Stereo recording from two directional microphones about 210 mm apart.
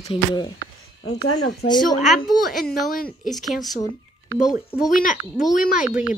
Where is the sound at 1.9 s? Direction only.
35° left (ahead or behind).